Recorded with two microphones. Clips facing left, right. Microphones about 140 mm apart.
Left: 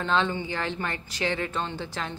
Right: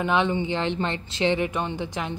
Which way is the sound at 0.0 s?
15° right (ahead or behind).